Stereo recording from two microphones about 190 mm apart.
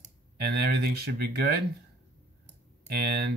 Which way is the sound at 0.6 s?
55° right (ahead or behind).